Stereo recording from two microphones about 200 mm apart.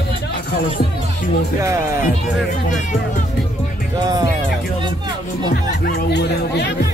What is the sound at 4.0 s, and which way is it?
Speech, 20° right (ahead or behind).